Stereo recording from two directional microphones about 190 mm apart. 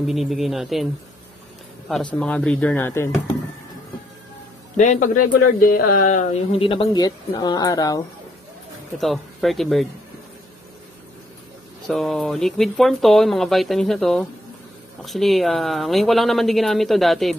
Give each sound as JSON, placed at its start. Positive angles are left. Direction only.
{"t": 0.0, "sound": "speech", "side_deg": 0}
{"t": 2.1, "sound": "speech", "side_deg": 5}
{"t": 4.7, "sound": "speech", "side_deg": 40}
{"t": 6.6, "sound": "speech", "side_deg": 25}
{"t": 8.9, "sound": "speech", "side_deg": 0}
{"t": 11.9, "sound": "speech", "side_deg": 0}